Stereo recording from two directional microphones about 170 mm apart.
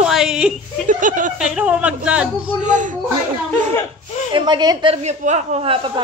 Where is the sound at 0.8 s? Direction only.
50° right (ahead or behind).